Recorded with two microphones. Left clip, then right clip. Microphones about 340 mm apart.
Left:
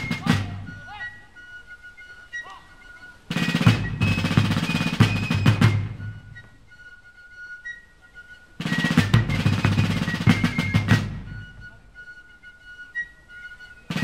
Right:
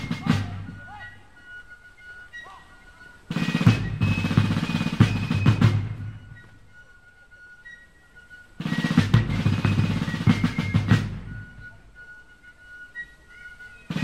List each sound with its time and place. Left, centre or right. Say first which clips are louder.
0.1 s music: left 2 dB; left
3.3 s music: left 2 dB; left
8.5 s music: left 3 dB; left
13.9 s music: left 3 dB; left